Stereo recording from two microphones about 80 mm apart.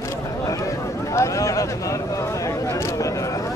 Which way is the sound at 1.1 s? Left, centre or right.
Left.